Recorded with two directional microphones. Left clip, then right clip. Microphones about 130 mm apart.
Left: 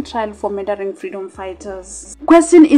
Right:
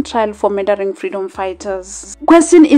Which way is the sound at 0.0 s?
30° right (ahead or behind).